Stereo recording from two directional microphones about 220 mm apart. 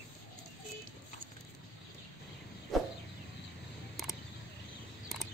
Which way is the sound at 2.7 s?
Centre (ahead or behind).